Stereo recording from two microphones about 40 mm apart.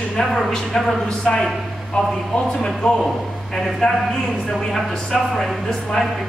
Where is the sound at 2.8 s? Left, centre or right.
Centre.